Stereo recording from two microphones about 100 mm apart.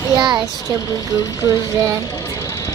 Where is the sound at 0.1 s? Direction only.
40° right (ahead or behind).